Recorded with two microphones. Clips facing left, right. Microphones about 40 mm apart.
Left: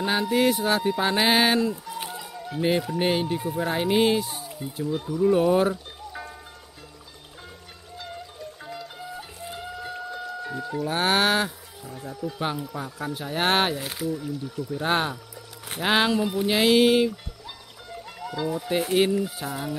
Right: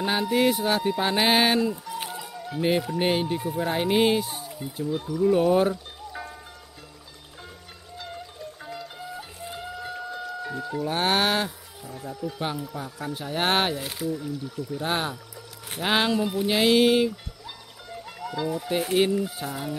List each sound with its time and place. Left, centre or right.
0.0 s speech: centre
2.0 s music: centre
3.0 s speech: centre
8.0 s music: centre
11.9 s speech: centre
13.1 s speech: centre
14.8 s speech: left
15.8 s speech: centre